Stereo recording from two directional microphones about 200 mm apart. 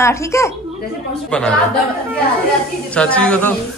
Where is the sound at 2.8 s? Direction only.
5° left (ahead or behind).